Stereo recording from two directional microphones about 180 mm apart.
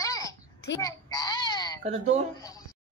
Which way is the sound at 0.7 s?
20° left (ahead or behind).